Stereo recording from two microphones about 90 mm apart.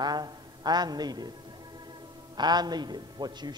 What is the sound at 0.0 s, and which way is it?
A man's voice, 50° right (ahead or behind).